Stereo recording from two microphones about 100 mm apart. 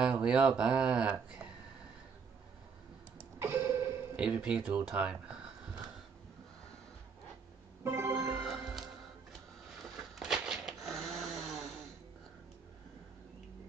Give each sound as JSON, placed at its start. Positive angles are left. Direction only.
{"t": 0.0, "sound": "speech", "side_deg": -10}
{"t": 3.2, "sound": "clock", "side_deg": -30}
{"t": 4.2, "sound": "speech", "side_deg": -10}
{"t": 7.8, "sound": "music", "side_deg": -25}
{"t": 8.3, "sound": "music", "side_deg": 0}
{"t": 10.1, "sound": "snoring", "side_deg": -5}